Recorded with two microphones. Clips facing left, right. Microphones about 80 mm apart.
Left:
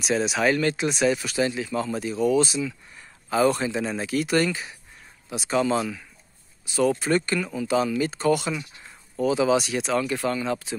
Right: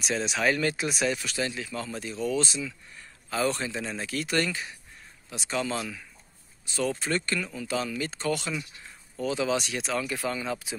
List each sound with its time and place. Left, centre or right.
0.0 s speech: centre
0.6 s speech: centre
1.0 s speech: centre